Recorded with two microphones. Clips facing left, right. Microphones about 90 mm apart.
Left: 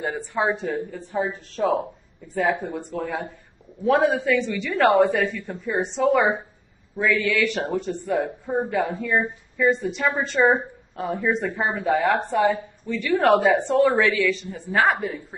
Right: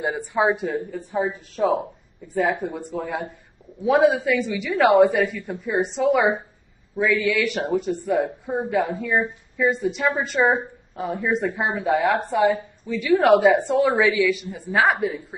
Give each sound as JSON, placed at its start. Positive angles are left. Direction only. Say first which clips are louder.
{"t": 0.0, "sound": "a woman's voice", "louder": "right 3 dB", "side_deg": -15}